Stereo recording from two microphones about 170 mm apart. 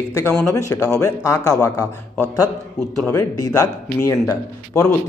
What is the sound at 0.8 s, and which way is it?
Speech, 5° left (ahead or behind).